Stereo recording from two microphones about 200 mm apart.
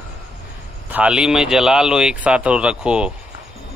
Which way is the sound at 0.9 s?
5° right (ahead or behind).